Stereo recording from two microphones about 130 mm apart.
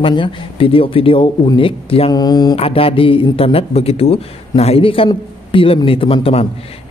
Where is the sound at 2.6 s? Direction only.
45° left (ahead or behind).